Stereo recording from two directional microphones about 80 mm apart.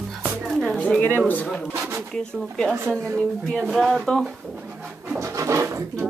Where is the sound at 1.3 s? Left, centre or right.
Centre.